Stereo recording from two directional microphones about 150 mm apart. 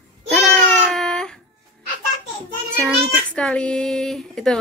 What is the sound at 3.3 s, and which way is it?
A woman's voice, 5° left (ahead or behind).